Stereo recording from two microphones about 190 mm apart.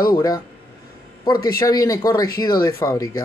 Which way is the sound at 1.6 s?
20° left (ahead or behind).